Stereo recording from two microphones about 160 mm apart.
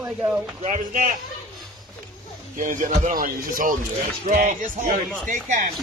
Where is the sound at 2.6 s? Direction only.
55° right (ahead or behind).